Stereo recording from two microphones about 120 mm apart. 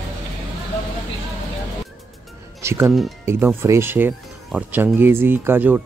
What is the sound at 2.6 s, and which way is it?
Speech, 20° right (ahead or behind).